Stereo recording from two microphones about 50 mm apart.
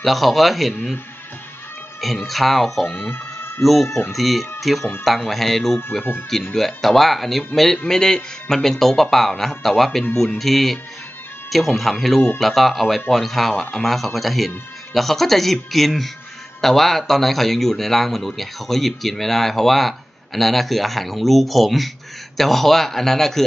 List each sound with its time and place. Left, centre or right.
0.0 s speech: centre
2.0 s speech: centre
3.0 s a sound: left
3.6 s speech: centre